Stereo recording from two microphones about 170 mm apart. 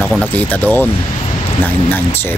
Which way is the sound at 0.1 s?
10° left (ahead or behind).